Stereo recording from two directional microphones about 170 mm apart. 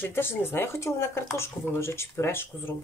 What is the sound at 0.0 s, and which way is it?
Speech, 15° left (ahead or behind).